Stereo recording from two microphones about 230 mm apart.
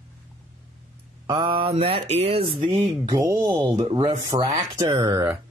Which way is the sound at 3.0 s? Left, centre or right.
Centre.